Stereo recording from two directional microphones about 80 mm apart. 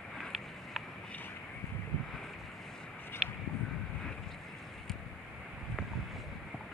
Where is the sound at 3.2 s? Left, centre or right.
Centre.